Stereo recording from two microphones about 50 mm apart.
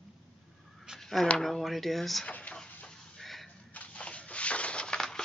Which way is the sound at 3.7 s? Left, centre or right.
Left.